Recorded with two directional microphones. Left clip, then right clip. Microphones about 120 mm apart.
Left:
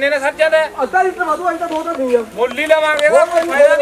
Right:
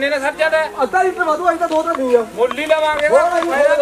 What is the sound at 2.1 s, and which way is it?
Speech, 5° left (ahead or behind).